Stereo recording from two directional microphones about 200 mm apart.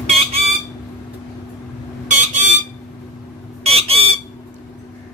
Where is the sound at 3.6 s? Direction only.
30° right (ahead or behind).